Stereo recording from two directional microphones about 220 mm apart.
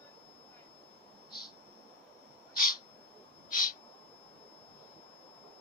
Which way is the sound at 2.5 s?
40° left (ahead or behind).